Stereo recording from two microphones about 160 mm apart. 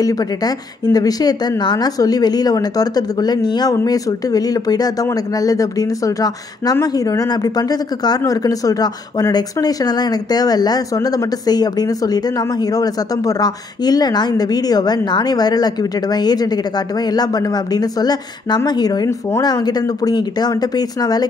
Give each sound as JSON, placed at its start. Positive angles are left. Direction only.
{"t": 0.0, "sound": "speech", "side_deg": 20}